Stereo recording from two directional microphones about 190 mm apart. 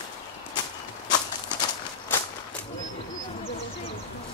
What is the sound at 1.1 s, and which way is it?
Walk, 20° left (ahead or behind).